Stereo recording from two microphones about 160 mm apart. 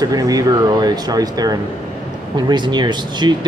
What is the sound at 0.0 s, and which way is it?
Speech, 25° right (ahead or behind).